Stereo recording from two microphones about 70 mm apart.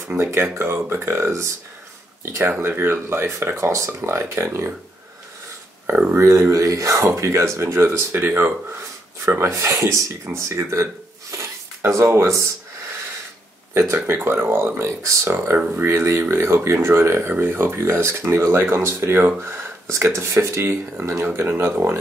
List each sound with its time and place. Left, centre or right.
0.2 s speech: right
6.1 s speech: right
11.3 s a sound: right
14.0 s speech: right
15.5 s speech: right
15.8 s speech: right